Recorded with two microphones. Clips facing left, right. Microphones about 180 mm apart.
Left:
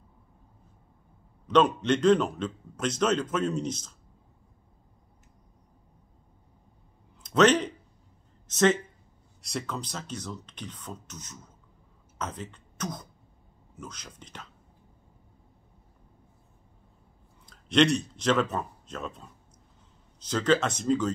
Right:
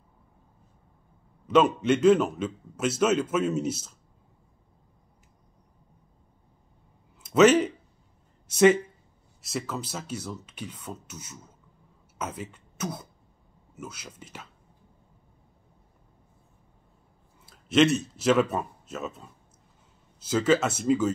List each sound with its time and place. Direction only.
1.5 s a man's voice: 5° right (ahead or behind)
7.2 s a man's voice: 5° right (ahead or behind)
17.5 s a man's voice: 5° right (ahead or behind)